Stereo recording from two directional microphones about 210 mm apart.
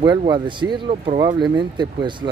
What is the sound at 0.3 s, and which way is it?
Speech, 20° right (ahead or behind).